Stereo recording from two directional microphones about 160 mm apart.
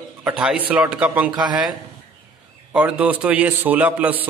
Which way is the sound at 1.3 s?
25° right (ahead or behind).